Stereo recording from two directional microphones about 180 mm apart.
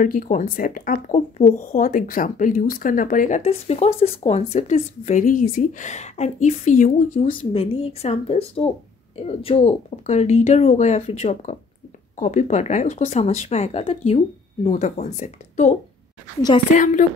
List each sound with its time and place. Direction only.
0.0 s speech: 50° left (ahead or behind)
7.2 s speech: 30° left (ahead or behind)
16.7 s speech: 45° left (ahead or behind)